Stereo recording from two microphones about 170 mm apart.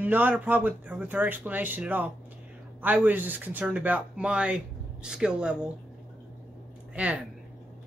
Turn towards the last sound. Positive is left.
turn(degrees=-10)  # may be behind; listen again after turning